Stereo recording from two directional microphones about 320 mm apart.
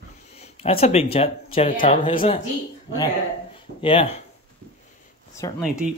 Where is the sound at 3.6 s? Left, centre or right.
Centre.